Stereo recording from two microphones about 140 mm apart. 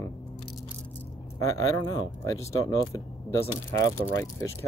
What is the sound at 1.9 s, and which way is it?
Speech, 20° left (ahead or behind).